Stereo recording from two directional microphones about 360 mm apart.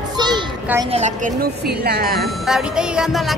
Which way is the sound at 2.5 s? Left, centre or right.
Centre.